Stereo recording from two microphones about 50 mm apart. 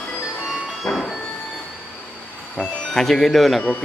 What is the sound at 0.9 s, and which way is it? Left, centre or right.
Music, left.